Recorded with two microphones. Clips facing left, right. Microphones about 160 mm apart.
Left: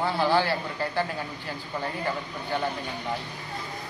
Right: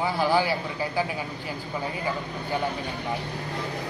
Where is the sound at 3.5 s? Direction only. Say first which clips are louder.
Right 4 dB; 75° right (ahead or behind).